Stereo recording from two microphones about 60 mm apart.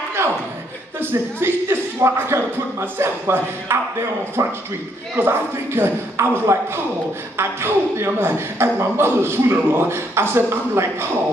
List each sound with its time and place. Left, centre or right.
0.9 s a man's voice: right
4.4 s a man's voice: right
5.1 s a man's voice: right